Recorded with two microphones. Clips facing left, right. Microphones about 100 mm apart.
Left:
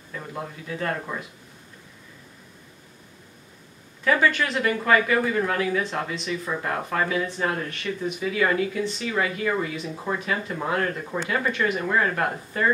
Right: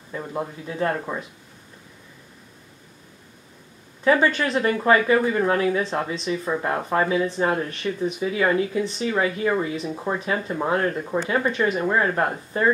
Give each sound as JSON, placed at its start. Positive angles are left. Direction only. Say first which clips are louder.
{"t": 0.1, "sound": "speech", "louder": "right 5 dB", "side_deg": -25}
{"t": 4.0, "sound": "speech", "louder": "right 3 dB", "side_deg": -25}